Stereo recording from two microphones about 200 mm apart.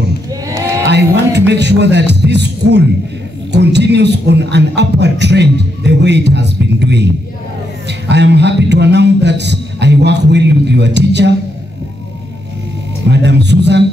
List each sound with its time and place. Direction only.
0.3 s a sound: 15° right (ahead or behind)
0.8 s music: 60° right (ahead or behind)
3.5 s a man's voice: 60° right (ahead or behind)
8.1 s a man's voice: 60° right (ahead or behind)
13.1 s a man's voice: 60° right (ahead or behind)